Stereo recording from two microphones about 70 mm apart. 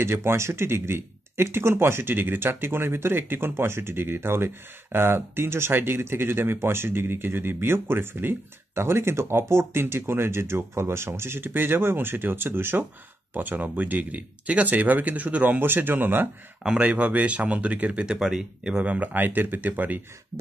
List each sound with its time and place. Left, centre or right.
0.0 s speech: right
16.6 s speech: centre